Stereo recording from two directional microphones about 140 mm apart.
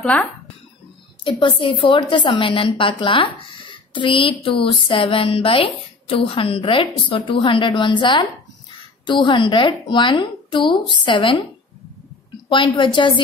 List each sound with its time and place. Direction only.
0.0 s speech: 10° left (ahead or behind)
1.2 s speech: 35° left (ahead or behind)
12.4 s speech: 35° left (ahead or behind)